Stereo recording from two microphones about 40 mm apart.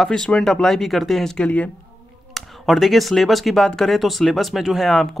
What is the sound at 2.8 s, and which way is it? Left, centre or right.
Speech, centre.